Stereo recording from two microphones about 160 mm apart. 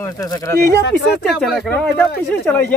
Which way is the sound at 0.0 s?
20° left (ahead or behind).